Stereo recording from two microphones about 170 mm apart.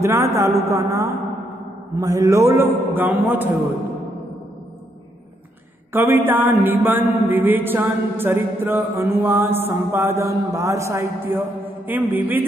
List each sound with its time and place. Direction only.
0.0 s a man's voice: 15° right (ahead or behind)
5.9 s a man's voice: 10° right (ahead or behind)